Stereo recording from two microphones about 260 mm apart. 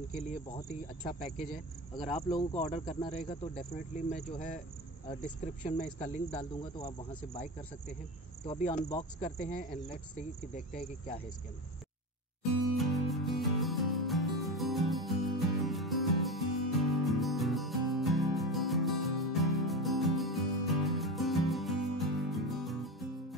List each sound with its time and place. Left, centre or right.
0.1 s speech: left
8.5 s speech: left
12.7 s music: centre